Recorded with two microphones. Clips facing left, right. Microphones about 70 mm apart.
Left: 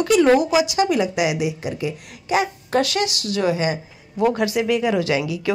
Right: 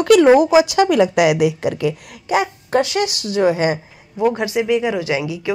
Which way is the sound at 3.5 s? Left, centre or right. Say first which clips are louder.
Right 4 dB; right.